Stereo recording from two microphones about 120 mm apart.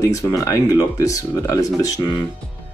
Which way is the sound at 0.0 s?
25° left (ahead or behind).